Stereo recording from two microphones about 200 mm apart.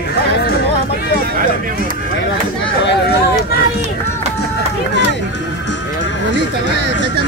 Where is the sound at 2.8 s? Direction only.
60° left (ahead or behind).